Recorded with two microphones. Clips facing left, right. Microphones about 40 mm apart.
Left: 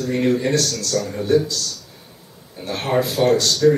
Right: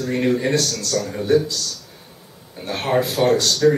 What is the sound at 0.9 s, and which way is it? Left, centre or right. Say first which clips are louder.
Speech: left 1 dB; centre.